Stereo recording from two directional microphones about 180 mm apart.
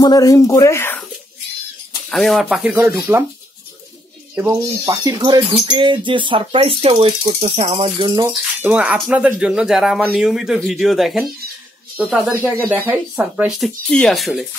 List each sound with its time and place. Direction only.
0.0 s speech: 20° left (ahead or behind)
2.0 s speech: centre (ahead or behind)
4.4 s speech: 20° right (ahead or behind)
8.7 s speech: 10° right (ahead or behind)